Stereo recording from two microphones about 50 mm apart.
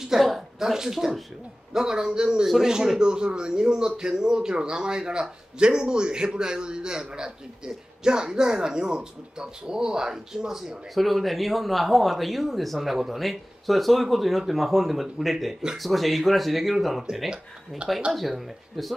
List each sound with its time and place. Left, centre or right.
0.0 s a woman's voice: centre
11.0 s speech: centre
17.8 s speech: right